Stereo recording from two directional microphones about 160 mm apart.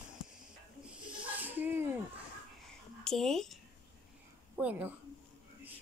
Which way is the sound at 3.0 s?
5° left (ahead or behind).